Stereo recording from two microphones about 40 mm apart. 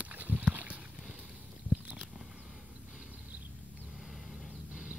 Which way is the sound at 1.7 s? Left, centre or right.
Right.